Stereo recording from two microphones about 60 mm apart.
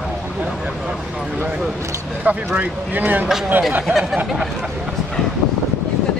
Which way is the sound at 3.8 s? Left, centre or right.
Centre.